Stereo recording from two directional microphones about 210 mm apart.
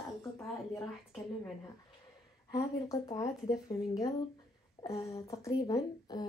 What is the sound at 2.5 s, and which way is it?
A woman's voice, 15° left (ahead or behind).